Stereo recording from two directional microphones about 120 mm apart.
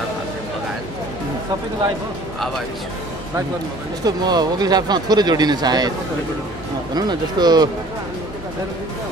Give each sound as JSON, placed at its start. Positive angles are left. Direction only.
{"t": 4.0, "sound": "speech", "side_deg": -35}
{"t": 7.0, "sound": "speech", "side_deg": -35}